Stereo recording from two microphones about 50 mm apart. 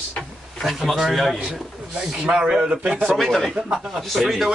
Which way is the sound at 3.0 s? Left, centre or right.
Centre.